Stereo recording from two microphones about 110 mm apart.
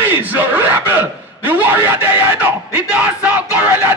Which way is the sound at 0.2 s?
15° right (ahead or behind).